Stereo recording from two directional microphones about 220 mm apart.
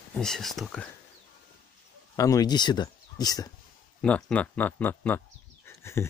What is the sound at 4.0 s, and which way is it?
Speech, 5° left (ahead or behind).